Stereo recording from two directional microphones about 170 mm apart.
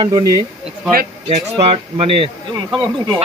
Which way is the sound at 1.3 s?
35° right (ahead or behind).